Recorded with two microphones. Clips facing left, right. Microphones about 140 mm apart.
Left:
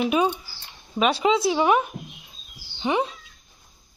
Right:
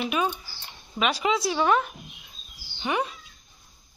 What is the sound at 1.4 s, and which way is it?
A man's voice, 15° left (ahead or behind).